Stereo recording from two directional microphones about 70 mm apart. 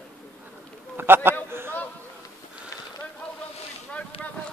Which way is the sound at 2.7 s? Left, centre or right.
Left.